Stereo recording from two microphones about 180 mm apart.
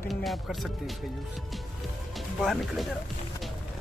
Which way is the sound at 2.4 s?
Centre (ahead or behind).